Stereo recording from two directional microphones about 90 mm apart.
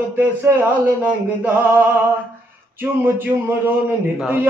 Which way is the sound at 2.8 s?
25° right (ahead or behind).